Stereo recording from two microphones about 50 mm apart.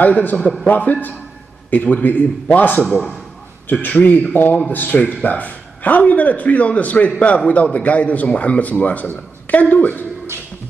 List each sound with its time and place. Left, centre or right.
0.0 s a man's voice: left